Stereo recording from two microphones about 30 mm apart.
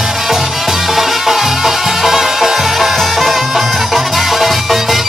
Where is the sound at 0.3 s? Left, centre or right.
Centre.